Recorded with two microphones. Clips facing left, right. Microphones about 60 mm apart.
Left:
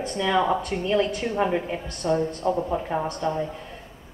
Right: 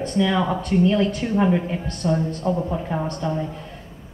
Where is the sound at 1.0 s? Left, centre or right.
Centre.